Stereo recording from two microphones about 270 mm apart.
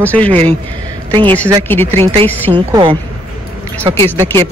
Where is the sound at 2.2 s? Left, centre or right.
Centre.